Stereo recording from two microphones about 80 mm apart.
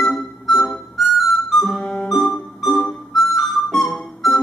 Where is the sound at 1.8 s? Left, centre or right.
Centre.